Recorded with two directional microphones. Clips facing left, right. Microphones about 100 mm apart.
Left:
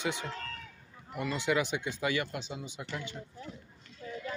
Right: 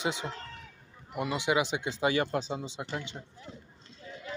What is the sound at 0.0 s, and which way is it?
Speech, 20° right (ahead or behind).